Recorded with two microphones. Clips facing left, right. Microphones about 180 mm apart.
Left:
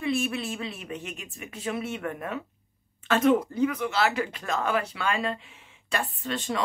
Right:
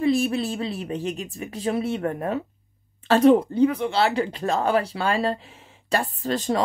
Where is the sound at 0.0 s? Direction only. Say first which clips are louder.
Right 7 dB; 35° right (ahead or behind).